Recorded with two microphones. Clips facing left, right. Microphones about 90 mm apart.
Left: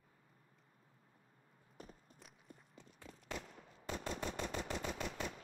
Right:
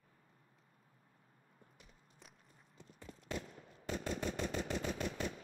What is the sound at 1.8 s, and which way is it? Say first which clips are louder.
Walk: left 13 dB; 40° left (ahead or behind).